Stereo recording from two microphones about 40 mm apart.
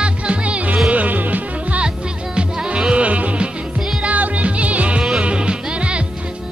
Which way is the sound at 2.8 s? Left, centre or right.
Right.